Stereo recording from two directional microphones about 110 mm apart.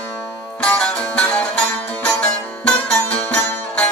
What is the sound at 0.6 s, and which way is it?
Music, 10° left (ahead or behind).